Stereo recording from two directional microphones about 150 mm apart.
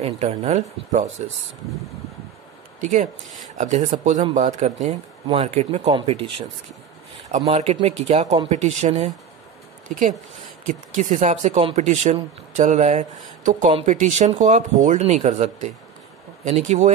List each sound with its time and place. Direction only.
0.0 s speech: 45° right (ahead or behind)
2.8 s speech: 55° right (ahead or behind)
5.2 s speech: 40° right (ahead or behind); by 10.1 s 60° right (ahead or behind)
11.1 s speech: 50° right (ahead or behind)